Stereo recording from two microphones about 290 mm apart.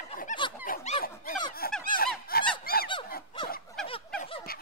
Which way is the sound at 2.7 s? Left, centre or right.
Left.